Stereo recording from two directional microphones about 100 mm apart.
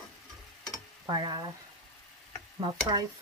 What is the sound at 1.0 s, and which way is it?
Speech, 45° right (ahead or behind).